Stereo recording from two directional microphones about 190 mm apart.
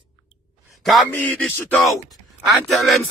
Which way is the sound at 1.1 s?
10° left (ahead or behind).